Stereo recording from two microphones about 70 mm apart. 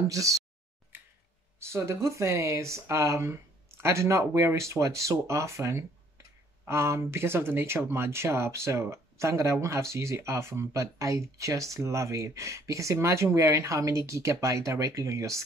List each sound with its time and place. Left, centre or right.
1.6 s speech: right